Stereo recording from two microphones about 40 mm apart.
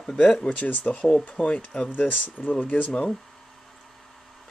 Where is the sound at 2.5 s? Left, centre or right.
Left.